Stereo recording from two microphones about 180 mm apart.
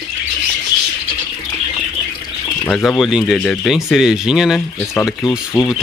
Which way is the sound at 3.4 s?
10° left (ahead or behind).